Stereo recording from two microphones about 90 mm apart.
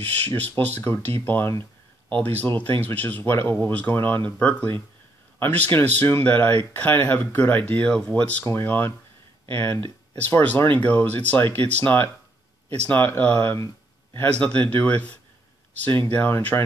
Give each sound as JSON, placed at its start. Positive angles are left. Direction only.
{"t": 0.0, "sound": "speech", "side_deg": 20}
{"t": 4.4, "sound": "speech", "side_deg": 15}
{"t": 8.5, "sound": "speech", "side_deg": 25}